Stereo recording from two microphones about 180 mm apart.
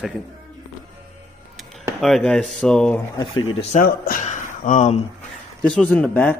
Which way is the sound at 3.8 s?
50° left (ahead or behind).